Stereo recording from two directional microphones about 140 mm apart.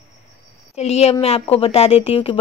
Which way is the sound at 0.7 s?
50° left (ahead or behind).